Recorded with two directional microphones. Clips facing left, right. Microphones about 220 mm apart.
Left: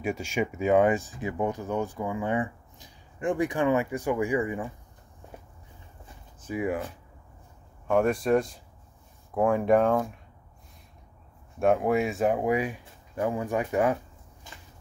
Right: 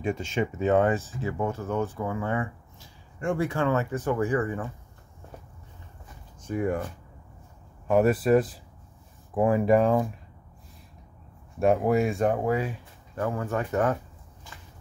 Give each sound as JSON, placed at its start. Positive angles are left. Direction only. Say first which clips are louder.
{"t": 0.0, "sound": "speech", "louder": "right 1 dB", "side_deg": 10}
{"t": 6.4, "sound": "speech", "louder": "right 1 dB", "side_deg": 5}
{"t": 7.9, "sound": "speech", "louder": "right 2 dB", "side_deg": -5}
{"t": 11.6, "sound": "speech", "louder": "right 1 dB", "side_deg": 0}